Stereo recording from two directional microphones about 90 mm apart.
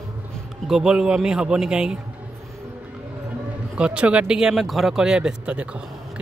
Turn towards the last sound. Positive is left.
turn(degrees=-10)  # may be behind; listen again after turning